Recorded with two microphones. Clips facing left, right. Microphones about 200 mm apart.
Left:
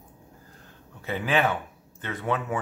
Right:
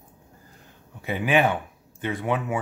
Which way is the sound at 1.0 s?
15° right (ahead or behind).